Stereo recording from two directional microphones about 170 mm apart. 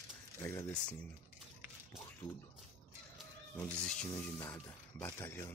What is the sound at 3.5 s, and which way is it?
Speech, 15° left (ahead or behind).